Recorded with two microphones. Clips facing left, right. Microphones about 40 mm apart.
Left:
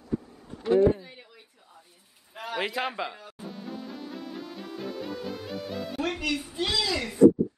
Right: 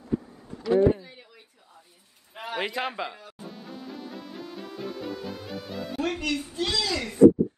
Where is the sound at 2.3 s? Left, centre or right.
Centre.